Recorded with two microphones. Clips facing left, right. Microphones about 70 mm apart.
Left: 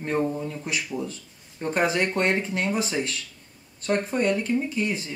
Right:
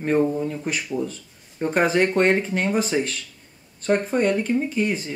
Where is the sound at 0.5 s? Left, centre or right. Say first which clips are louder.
Right 3 dB; right.